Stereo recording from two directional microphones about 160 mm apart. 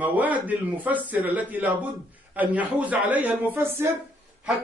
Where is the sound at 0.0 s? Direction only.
10° right (ahead or behind).